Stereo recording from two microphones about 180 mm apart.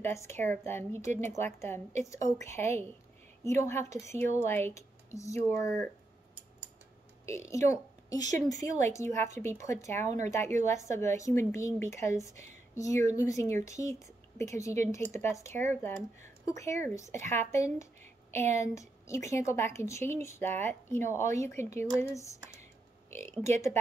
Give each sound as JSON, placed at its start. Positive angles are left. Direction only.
{"t": 0.0, "sound": "a woman's voice", "side_deg": 15}
{"t": 7.2, "sound": "a woman's voice", "side_deg": 15}
{"t": 8.6, "sound": "a woman's voice", "side_deg": -40}
{"t": 8.9, "sound": "a woman's voice", "side_deg": 15}
{"t": 10.0, "sound": "a woman's voice", "side_deg": -40}
{"t": 10.3, "sound": "a woman's voice", "side_deg": 15}